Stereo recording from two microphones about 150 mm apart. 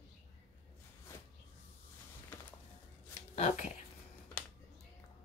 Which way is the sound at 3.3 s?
45° left (ahead or behind).